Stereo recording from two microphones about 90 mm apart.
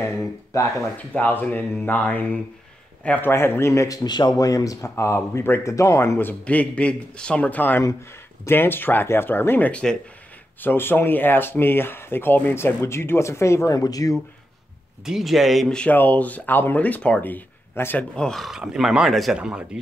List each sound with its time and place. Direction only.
0.0 s a sound: 35° left (ahead or behind)
1.1 s speech: 15° left (ahead or behind)
3.3 s a man's voice: 25° left (ahead or behind)
9.7 s speech: 15° left (ahead or behind)
10.6 s speech: 25° left (ahead or behind); by 14.1 s 45° left (ahead or behind)
15.0 s speech: centre (ahead or behind)
15.7 s speech: 15° left (ahead or behind)
18.1 s speech: 5° left (ahead or behind)